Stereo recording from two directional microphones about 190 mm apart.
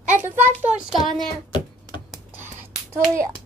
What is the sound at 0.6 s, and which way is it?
Speech, 5° right (ahead or behind).